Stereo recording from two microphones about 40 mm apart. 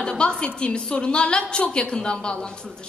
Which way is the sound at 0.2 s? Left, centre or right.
Left.